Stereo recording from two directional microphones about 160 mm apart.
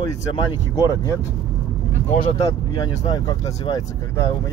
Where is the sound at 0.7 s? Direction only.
20° left (ahead or behind).